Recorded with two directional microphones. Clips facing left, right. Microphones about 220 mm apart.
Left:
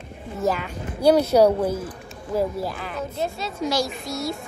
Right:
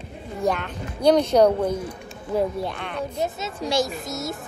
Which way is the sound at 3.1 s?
20° right (ahead or behind).